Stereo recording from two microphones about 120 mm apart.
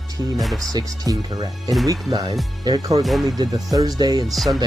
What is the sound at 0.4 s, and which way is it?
Speech, centre (ahead or behind).